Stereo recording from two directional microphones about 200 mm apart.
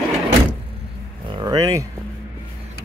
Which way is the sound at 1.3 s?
20° right (ahead or behind).